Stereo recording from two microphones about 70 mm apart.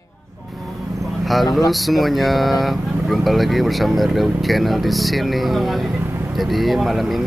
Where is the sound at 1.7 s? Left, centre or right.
Centre.